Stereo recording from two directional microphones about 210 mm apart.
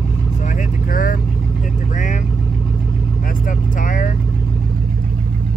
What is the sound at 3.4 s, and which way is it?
Vehicle, 40° left (ahead or behind).